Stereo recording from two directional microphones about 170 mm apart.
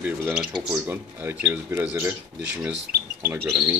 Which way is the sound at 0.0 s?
10° right (ahead or behind).